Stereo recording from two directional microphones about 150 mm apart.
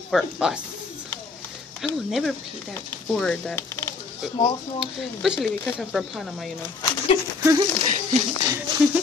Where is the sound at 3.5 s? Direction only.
15° left (ahead or behind).